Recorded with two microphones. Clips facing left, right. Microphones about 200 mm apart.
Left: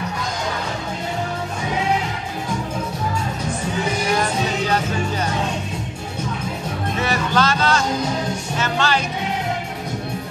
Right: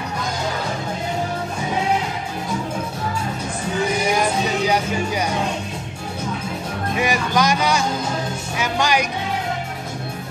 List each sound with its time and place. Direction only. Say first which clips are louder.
4.2 s music: right 1 dB; 10° right (ahead or behind)
7.0 s a sound: right 1 dB; 15° right (ahead or behind)
8.5 s music: right 2 dB; 15° right (ahead or behind)